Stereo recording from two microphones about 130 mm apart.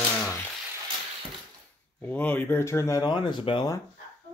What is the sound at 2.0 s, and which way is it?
Speech, 15° left (ahead or behind).